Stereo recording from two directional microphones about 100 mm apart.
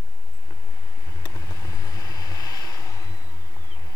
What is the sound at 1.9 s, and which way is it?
Vehicle, 40° left (ahead or behind).